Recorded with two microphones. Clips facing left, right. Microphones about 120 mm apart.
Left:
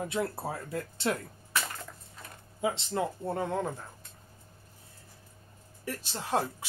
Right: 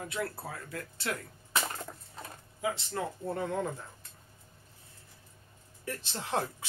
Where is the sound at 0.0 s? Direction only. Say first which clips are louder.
Left 4 dB; 25° left (ahead or behind).